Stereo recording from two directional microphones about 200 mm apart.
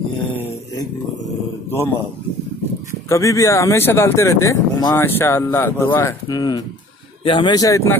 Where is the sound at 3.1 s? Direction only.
15° left (ahead or behind).